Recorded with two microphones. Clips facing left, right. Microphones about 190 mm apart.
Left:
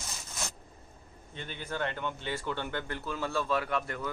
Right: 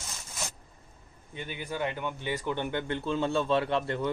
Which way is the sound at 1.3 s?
10° right (ahead or behind).